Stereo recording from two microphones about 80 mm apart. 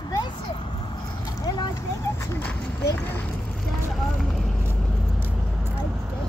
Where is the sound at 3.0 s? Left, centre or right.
Left.